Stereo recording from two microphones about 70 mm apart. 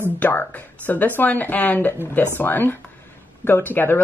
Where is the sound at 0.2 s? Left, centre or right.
Left.